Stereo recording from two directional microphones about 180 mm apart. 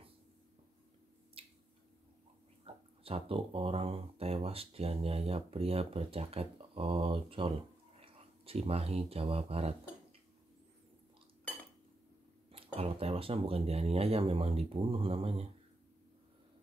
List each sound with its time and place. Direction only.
1.4 s squish: 30° right (ahead or behind)
2.6 s speech: 30° right (ahead or behind)
12.4 s speech: 35° right (ahead or behind)